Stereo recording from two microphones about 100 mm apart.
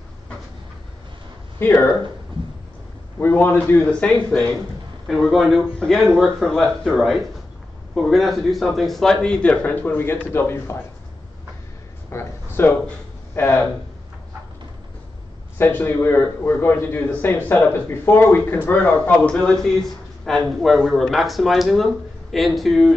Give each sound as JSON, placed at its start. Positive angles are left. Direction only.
{"t": 1.6, "sound": "a man's voice", "side_deg": 20}
{"t": 2.3, "sound": "a sound", "side_deg": -55}
{"t": 3.2, "sound": "speech", "side_deg": 20}
{"t": 5.0, "sound": "speech", "side_deg": 0}
{"t": 12.1, "sound": "a sound", "side_deg": 25}
{"t": 15.5, "sound": "a man's voice", "side_deg": 20}